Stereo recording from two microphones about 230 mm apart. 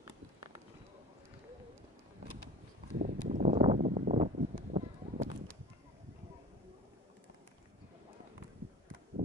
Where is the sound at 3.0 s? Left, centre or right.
Right.